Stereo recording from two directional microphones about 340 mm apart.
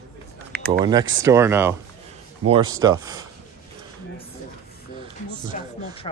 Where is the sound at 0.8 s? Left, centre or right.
Centre.